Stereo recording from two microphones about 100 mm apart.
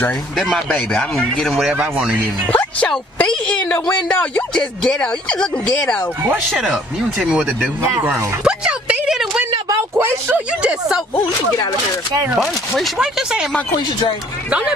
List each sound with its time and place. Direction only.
0.4 s speech: 5° left (ahead or behind)
1.7 s speech: 10° right (ahead or behind)
2.5 s speech: 15° left (ahead or behind)
6.6 s speech: 5° right (ahead or behind)
7.8 s speech: 25° right (ahead or behind)
8.1 s a sound: 10° right (ahead or behind)
9.9 s speech: 20° right (ahead or behind)
12.4 s speech: centre (ahead or behind)